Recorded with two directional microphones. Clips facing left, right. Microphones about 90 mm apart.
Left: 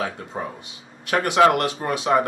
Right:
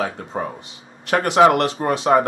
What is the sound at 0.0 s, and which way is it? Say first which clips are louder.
Speech: right 3 dB; 30° right (ahead or behind).